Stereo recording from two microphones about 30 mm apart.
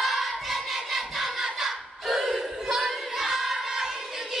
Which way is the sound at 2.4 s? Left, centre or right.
Centre.